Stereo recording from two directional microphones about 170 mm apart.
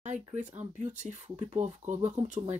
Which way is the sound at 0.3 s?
45° right (ahead or behind).